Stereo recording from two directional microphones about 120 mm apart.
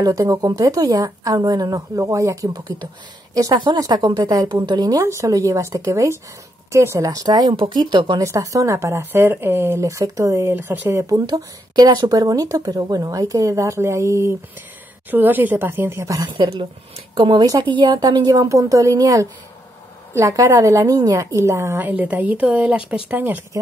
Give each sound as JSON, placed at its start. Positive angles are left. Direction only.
{"t": 0.0, "sound": "a woman's voice", "side_deg": -30}
{"t": 8.2, "sound": "speech", "side_deg": -25}
{"t": 10.5, "sound": "a woman's voice", "side_deg": -15}
{"t": 16.3, "sound": "a woman's voice", "side_deg": -40}